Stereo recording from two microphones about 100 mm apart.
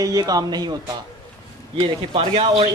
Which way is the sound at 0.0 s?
40° right (ahead or behind).